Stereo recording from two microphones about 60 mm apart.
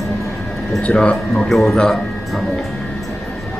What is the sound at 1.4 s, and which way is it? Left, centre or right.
Speech, centre.